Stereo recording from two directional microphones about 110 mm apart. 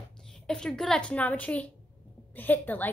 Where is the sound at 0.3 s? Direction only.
5° left (ahead or behind).